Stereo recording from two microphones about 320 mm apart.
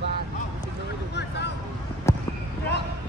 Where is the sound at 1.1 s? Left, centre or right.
Left.